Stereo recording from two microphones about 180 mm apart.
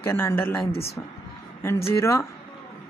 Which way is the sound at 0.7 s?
35° left (ahead or behind).